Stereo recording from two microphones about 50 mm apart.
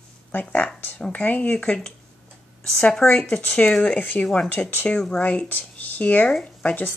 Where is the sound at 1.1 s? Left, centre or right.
Left.